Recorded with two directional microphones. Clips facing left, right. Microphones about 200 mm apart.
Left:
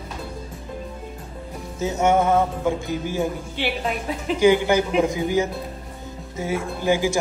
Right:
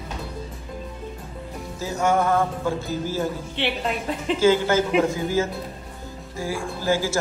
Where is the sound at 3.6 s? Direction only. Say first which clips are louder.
Even; centre (ahead or behind).